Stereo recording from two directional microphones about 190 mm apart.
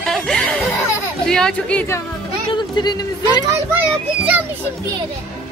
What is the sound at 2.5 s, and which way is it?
Speech, 25° left (ahead or behind).